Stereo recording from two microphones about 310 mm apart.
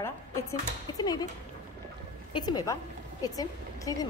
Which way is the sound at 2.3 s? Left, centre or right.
Centre.